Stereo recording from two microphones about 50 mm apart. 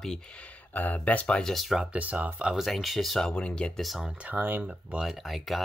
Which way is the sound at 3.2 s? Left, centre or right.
Centre.